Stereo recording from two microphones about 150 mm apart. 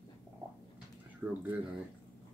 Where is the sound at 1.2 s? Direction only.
10° right (ahead or behind).